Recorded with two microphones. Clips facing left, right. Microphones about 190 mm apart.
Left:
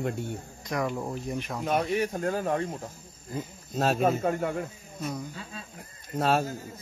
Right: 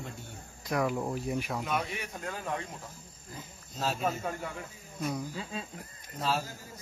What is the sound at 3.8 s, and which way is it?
Speech, 60° left (ahead or behind).